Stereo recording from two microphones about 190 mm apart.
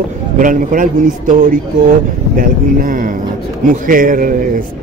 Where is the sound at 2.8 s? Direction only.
45° right (ahead or behind).